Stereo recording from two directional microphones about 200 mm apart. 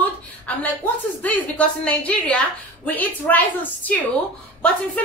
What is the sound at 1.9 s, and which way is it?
A woman's voice, 5° left (ahead or behind).